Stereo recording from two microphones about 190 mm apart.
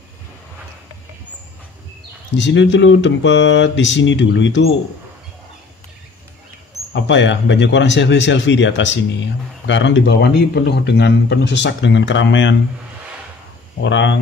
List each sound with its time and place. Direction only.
2.3 s speech: 70° left (ahead or behind)
6.9 s speech: 70° left (ahead or behind)
13.8 s speech: 70° left (ahead or behind)